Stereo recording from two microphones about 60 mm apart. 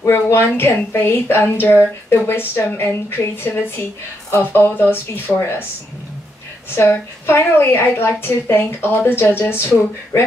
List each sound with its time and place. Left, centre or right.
0.1 s speech: left
4.3 s speech: left
6.7 s a woman's voice: left